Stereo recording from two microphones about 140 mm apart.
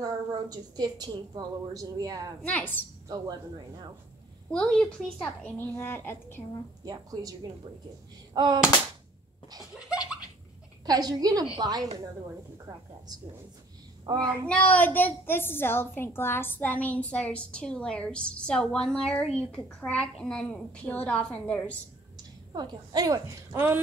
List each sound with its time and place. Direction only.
0.0 s a woman's voice: 30° right (ahead or behind)
2.4 s a woman's voice: 10° left (ahead or behind)
4.5 s a woman's voice: 5° left (ahead or behind)
6.8 s a woman's voice: 25° right (ahead or behind)
8.3 s a sound: 30° right (ahead or behind)
9.8 s laughter: 5° right (ahead or behind)
10.9 s a woman's voice: 30° right (ahead or behind)
14.1 s a woman's voice: 30° right (ahead or behind)
14.5 s a woman's voice: 10° left (ahead or behind)
22.5 s a woman's voice: 30° right (ahead or behind)